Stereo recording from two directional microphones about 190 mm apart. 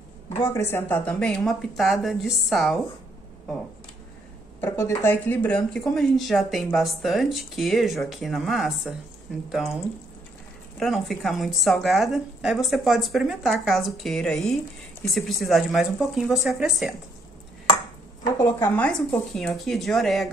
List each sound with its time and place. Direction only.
0.4 s speech: 15° left (ahead or behind)
4.6 s speech: 15° left (ahead or behind)
10.8 s speech: centre (ahead or behind)
18.4 s speech: 10° left (ahead or behind)